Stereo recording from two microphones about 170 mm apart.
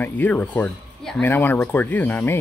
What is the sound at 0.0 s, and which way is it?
Speech, 10° left (ahead or behind).